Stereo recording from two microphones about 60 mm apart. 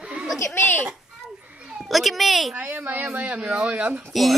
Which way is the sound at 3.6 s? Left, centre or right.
Right.